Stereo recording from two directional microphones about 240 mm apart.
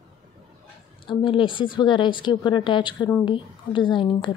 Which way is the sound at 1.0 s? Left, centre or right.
Left.